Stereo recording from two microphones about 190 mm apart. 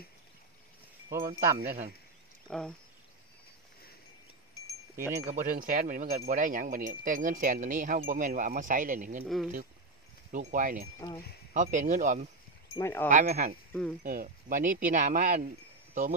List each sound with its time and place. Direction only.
1.1 s speech: 15° right (ahead or behind)
2.4 s speech: 5° left (ahead or behind)
4.9 s speech: 15° right (ahead or behind)
5.3 s speech: 45° right (ahead or behind)
9.2 s speech: centre (ahead or behind)
10.3 s speech: 45° right (ahead or behind)
12.7 s speech: 15° left (ahead or behind)
13.1 s speech: 40° right (ahead or behind)